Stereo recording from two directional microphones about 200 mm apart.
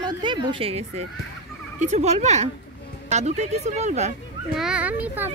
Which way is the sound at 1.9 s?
35° right (ahead or behind).